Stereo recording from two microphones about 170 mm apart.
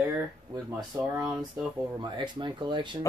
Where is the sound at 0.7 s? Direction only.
20° right (ahead or behind).